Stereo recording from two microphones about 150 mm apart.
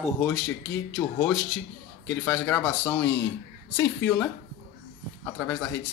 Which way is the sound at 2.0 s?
15° left (ahead or behind).